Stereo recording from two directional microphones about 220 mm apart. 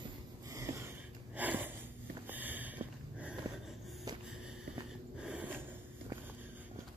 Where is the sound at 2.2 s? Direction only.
10° right (ahead or behind).